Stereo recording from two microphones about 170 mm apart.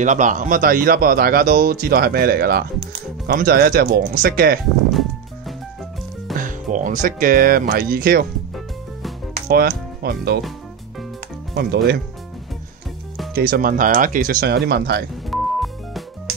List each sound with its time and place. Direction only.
0.0 s speech: 45° right (ahead or behind)
6.3 s speech: 50° right (ahead or behind)
9.5 s speech: 65° right (ahead or behind)
11.5 s speech: 70° right (ahead or behind)
13.3 s speech: 55° right (ahead or behind)
15.2 s music: centre (ahead or behind)